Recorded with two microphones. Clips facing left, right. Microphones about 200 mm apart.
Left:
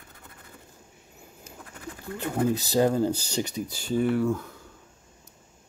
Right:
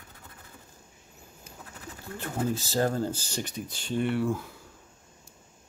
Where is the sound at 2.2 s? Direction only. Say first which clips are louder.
Left 5 dB; 15° left (ahead or behind).